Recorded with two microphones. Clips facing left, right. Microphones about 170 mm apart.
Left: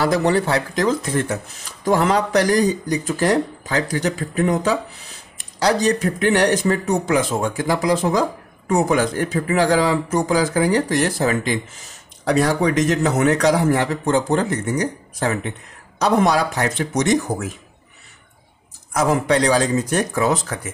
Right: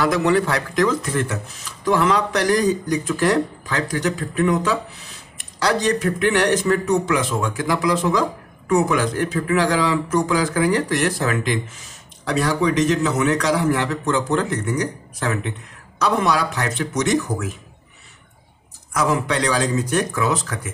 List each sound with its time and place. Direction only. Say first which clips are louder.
0.0 s speech: even; 35° left (ahead or behind)
12.3 s speech: left 2 dB; 45° left (ahead or behind)
16.0 s speech: left 3 dB; 40° left (ahead or behind)
17.3 s speech: left 1 dB; 25° left (ahead or behind)
18.9 s speech: left 3 dB; 40° left (ahead or behind)